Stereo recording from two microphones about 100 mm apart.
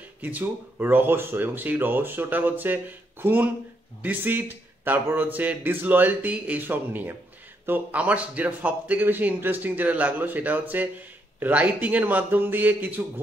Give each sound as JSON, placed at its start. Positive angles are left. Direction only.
{"t": 0.2, "sound": "a man's voice", "side_deg": -20}